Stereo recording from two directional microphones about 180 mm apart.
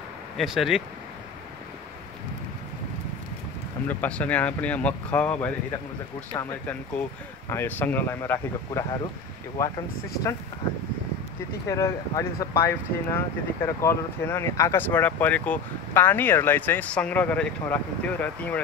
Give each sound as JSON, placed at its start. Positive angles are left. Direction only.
{"t": 0.4, "sound": "speech", "side_deg": 0}
{"t": 3.8, "sound": "speech", "side_deg": 10}
{"t": 6.3, "sound": "speech", "side_deg": 20}
{"t": 11.6, "sound": "speech", "side_deg": 15}